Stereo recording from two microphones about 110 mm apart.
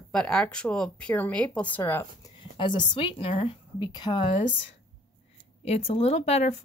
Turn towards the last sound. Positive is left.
turn(degrees=75)  # may be behind; listen again after turning